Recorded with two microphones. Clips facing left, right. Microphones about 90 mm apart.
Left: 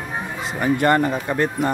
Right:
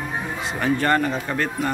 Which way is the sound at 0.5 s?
15° left (ahead or behind).